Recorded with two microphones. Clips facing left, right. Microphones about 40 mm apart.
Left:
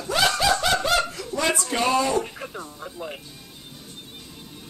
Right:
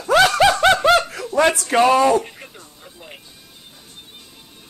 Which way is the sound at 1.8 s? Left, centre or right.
Right.